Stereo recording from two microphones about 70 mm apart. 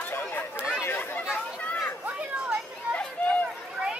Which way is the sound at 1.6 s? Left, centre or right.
Centre.